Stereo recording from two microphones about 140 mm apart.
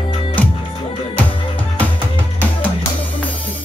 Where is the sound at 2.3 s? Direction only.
10° left (ahead or behind).